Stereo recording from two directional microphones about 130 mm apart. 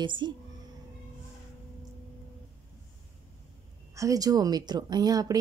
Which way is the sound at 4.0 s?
25° right (ahead or behind).